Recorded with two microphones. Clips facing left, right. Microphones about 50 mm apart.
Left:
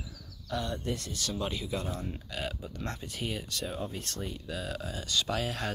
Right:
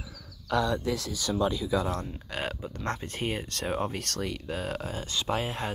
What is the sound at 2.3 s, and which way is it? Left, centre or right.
Speech, right.